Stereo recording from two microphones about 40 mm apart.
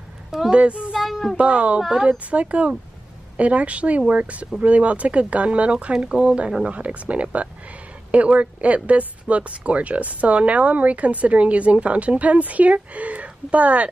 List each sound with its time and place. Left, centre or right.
0.5 s speech: right
0.9 s child singing: centre
1.3 s speech: right
1.8 s a woman's voice: centre
2.0 s speech: right